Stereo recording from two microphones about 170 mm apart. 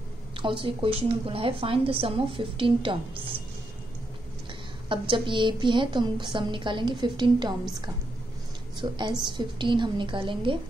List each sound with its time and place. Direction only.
0.4 s a woman's voice: 30° right (ahead or behind)
4.8 s a woman's voice: 30° right (ahead or behind)
8.8 s a woman's voice: 25° right (ahead or behind)